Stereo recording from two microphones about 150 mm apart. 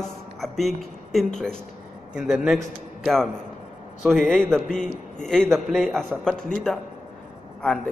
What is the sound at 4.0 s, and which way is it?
Speech, centre (ahead or behind).